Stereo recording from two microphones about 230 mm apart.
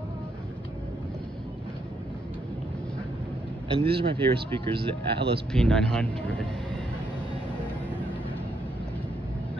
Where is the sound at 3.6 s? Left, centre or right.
Right.